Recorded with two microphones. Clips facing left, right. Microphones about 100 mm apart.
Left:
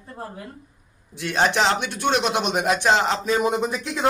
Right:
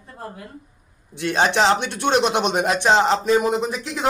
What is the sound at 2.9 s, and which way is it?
Speech, 30° right (ahead or behind).